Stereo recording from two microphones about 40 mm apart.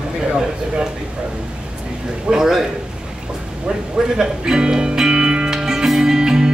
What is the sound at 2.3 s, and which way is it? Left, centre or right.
Speech, centre.